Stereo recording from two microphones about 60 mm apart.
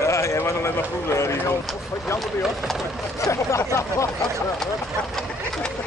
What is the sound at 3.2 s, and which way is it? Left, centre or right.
Speech, left.